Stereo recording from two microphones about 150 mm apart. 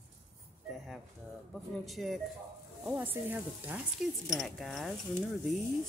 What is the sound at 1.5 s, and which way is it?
Speech, centre (ahead or behind).